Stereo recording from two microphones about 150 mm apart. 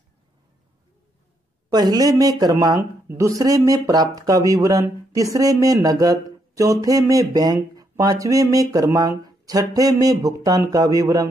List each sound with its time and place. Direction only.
1.7 s speech: 25° right (ahead or behind)